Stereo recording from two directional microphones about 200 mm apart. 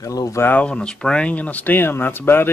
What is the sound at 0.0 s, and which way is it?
Speech, 15° left (ahead or behind).